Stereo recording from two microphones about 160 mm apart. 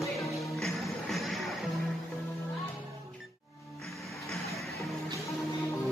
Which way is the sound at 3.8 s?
Centre (ahead or behind).